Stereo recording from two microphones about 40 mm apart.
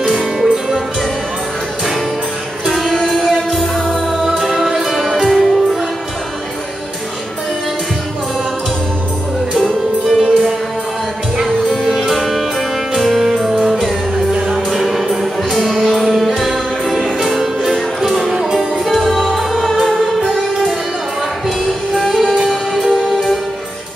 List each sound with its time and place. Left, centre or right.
0.1 s music: centre
2.6 s music: centre
9.5 s music: centre
10.0 s music: centre
11.4 s music: centre
21.9 s music: centre